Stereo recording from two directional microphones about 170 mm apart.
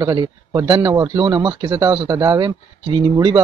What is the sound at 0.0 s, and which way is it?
Speech, 25° right (ahead or behind).